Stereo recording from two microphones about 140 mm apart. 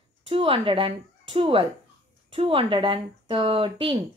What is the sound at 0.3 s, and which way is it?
A woman's voice, 40° right (ahead or behind).